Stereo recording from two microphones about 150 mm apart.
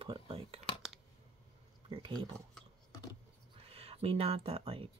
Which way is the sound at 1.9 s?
30° right (ahead or behind).